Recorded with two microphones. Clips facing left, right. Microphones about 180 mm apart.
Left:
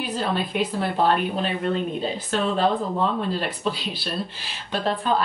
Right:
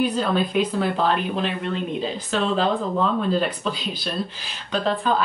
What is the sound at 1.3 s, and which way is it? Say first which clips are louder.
Speech: even; 40° left (ahead or behind).